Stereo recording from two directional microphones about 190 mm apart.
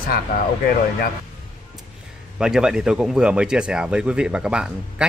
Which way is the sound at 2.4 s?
5° right (ahead or behind).